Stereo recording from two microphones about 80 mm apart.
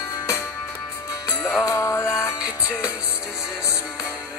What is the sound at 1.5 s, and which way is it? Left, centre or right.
Music, left.